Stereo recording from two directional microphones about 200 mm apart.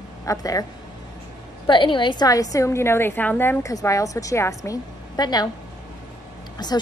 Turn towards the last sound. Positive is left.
turn(degrees=20)  # may be behind; listen again after turning